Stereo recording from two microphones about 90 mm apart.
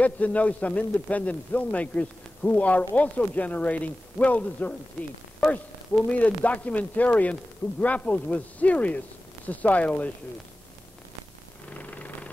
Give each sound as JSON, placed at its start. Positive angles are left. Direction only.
{"t": 0.0, "sound": "a man's voice", "side_deg": 15}
{"t": 5.4, "sound": "speech", "side_deg": 0}
{"t": 6.1, "sound": "a man's voice", "side_deg": 15}
{"t": 11.7, "sound": "a sound", "side_deg": 15}